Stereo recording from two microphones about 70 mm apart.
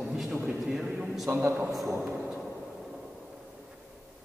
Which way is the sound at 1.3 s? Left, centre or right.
Right.